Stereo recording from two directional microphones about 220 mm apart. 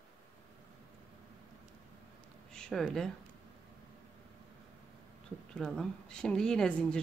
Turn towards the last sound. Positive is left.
turn(degrees=5)  # may be behind; listen again after turning